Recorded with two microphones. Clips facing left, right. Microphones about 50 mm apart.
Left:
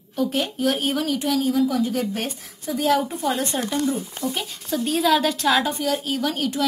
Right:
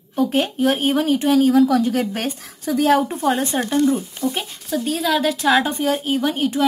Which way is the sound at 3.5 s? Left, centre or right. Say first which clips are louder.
Right 5 dB; right.